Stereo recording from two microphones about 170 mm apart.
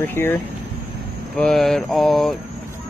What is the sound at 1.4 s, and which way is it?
Speech, centre (ahead or behind).